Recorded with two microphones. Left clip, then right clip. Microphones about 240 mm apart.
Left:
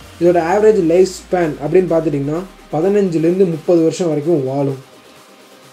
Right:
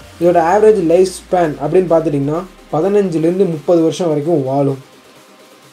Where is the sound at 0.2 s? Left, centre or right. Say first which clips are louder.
Right 2 dB; centre.